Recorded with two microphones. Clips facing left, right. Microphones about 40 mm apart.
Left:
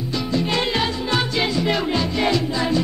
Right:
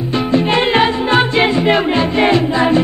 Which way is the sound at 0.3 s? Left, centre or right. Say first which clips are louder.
Right 8 dB; right.